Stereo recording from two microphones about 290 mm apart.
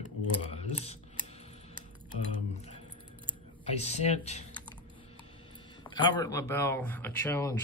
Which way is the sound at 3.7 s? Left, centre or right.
Left.